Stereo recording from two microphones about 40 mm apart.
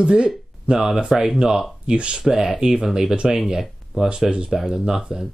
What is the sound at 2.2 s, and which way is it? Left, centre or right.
Speech, centre.